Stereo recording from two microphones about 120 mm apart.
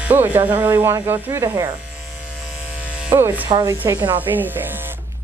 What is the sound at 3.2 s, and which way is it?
Speech, 15° right (ahead or behind).